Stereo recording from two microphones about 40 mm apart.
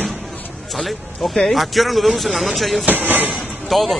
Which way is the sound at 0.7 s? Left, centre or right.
Centre.